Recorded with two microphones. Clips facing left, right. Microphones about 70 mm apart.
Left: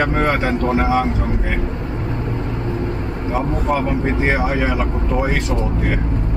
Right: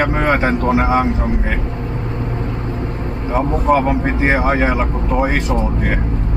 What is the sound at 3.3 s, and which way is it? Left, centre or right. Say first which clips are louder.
Speech: right 5 dB; right.